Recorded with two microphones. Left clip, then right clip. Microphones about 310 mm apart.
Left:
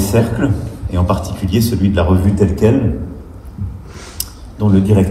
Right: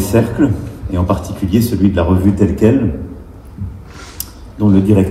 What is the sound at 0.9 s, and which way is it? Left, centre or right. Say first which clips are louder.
A man's voice: right 1 dB; left.